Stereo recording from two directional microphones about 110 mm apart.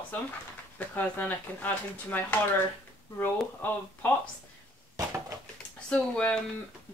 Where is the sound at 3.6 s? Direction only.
15° left (ahead or behind).